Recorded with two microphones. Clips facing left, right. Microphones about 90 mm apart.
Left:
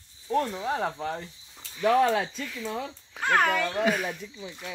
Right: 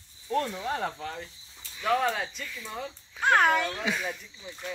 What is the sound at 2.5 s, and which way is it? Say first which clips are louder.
Speech: left 5 dB; 90° left.